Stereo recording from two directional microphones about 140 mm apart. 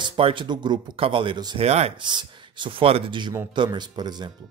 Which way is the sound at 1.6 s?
50° right (ahead or behind).